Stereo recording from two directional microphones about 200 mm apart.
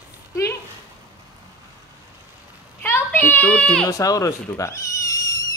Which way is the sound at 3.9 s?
15° left (ahead or behind).